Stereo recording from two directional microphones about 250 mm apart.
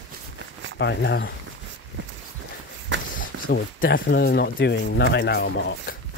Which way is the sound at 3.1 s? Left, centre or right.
Left.